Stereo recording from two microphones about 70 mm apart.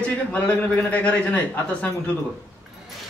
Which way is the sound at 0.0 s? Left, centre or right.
Centre.